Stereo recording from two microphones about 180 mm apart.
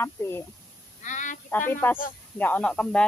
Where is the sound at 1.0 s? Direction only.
45° left (ahead or behind).